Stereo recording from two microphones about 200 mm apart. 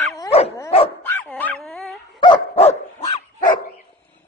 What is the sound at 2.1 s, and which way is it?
Dog, 25° left (ahead or behind).